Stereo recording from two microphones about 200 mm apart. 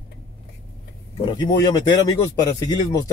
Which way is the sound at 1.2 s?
20° left (ahead or behind).